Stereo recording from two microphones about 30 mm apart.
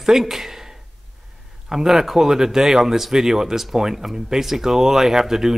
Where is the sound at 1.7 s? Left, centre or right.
Centre.